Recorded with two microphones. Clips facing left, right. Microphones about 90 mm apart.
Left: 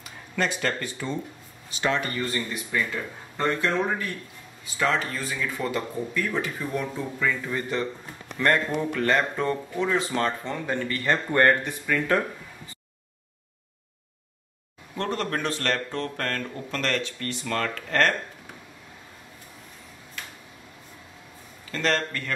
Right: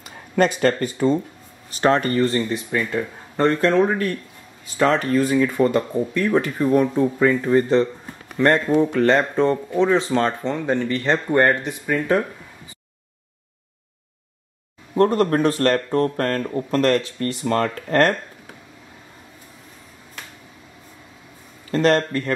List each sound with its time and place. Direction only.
0.0 s speech: 45° right (ahead or behind)
2.3 s speech: 35° right (ahead or behind)
3.6 s speech: 60° right (ahead or behind)
4.6 s speech: 45° right (ahead or behind)
8.4 s speech: 20° right (ahead or behind)
15.0 s speech: 40° right (ahead or behind)
21.7 s speech: 40° right (ahead or behind)